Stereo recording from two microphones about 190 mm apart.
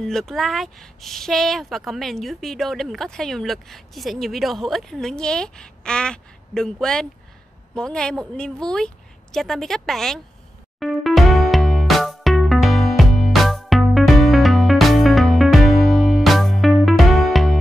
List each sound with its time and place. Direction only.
0.0 s speech: centre (ahead or behind)
10.8 s music: centre (ahead or behind)